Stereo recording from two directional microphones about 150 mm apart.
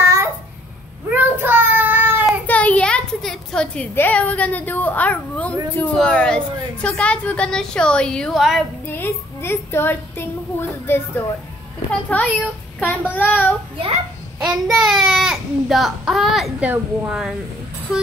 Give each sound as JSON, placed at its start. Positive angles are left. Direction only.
{"t": 0.0, "sound": "babbling", "side_deg": -15}
{"t": 1.1, "sound": "child singing", "side_deg": -10}
{"t": 2.4, "sound": "a woman's voice", "side_deg": 10}
{"t": 8.8, "sound": "a woman's voice", "side_deg": 15}
{"t": 14.4, "sound": "a child's voice", "side_deg": 0}